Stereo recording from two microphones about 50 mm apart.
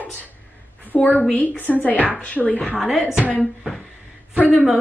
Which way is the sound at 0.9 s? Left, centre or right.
Left.